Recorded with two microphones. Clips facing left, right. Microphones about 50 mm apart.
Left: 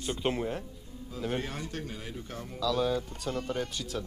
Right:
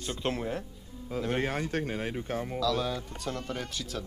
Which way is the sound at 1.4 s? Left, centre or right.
Right.